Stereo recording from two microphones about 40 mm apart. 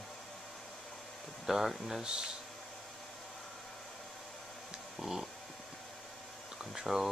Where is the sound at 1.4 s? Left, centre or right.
Centre.